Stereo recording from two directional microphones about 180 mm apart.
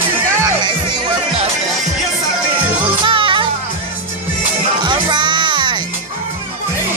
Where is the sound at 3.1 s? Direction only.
30° right (ahead or behind).